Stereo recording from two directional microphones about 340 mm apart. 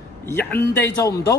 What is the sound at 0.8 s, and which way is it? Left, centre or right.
Speech, centre.